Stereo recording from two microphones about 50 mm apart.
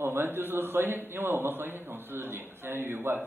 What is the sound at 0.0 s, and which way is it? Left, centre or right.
A man's voice, right.